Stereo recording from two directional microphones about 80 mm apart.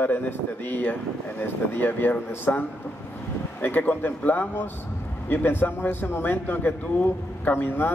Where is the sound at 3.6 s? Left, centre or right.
Left.